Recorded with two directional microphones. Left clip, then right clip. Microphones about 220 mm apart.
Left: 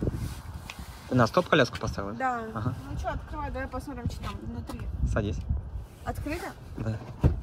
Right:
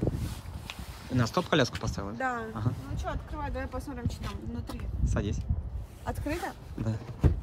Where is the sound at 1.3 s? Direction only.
10° right (ahead or behind).